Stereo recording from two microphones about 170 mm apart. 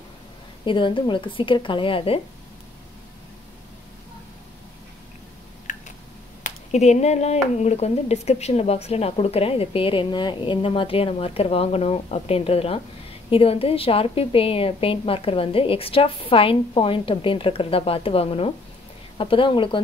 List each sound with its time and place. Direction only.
0.7 s a woman's voice: 30° left (ahead or behind)
5.7 s a sound: 45° left (ahead or behind)
6.4 s a woman's voice: 40° left (ahead or behind)